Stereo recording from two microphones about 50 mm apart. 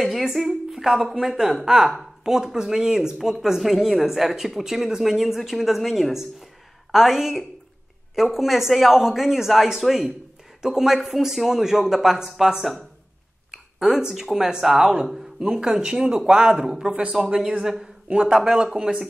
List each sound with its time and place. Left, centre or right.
0.0 s a woman's voice: centre
15.4 s speech: centre
16.9 s speech: right
17.3 s speech: centre
18.0 s speech: centre